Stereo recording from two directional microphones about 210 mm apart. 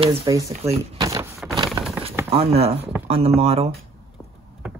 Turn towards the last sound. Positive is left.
turn(degrees=-30)  # may be behind; listen again after turning